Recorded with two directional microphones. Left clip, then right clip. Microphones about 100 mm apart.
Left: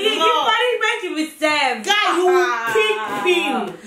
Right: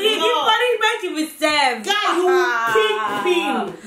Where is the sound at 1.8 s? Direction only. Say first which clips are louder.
Left 2 dB; centre (ahead or behind).